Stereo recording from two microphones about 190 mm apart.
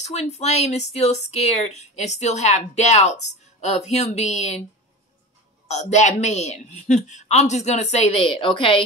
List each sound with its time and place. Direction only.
0.0 s speech: 35° left (ahead or behind)
5.7 s speech: 35° left (ahead or behind)